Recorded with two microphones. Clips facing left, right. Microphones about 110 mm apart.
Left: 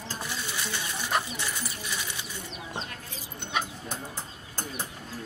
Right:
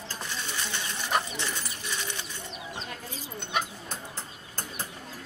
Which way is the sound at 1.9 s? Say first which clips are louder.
Right 1 dB; 10° left (ahead or behind).